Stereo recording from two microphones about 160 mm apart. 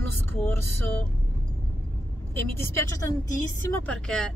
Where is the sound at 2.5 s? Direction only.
15° left (ahead or behind).